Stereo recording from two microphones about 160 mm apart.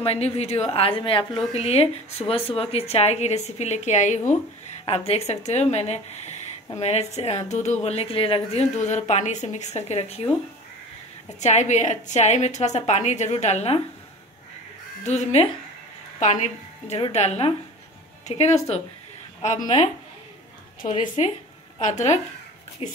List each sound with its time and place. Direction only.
0.0 s a woman's voice: 40° left (ahead or behind)
11.3 s a woman's voice: 45° left (ahead or behind)
15.0 s a woman's voice: 45° left (ahead or behind)
20.9 s a woman's voice: 45° left (ahead or behind)